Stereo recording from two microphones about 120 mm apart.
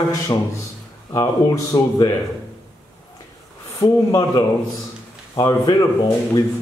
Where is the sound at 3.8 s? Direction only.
25° left (ahead or behind).